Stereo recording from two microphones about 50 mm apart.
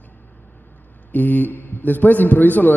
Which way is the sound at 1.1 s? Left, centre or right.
Left.